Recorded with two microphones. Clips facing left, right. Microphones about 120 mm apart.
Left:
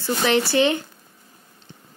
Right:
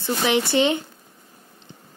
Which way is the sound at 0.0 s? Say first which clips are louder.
Left 1 dB; 15° right (ahead or behind).